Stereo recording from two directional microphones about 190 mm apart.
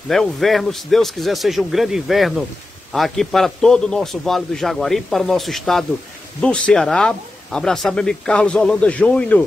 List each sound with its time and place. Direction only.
0.1 s speech: centre (ahead or behind)